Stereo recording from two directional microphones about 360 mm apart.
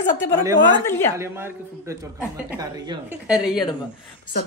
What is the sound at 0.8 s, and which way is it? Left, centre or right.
Speech, centre.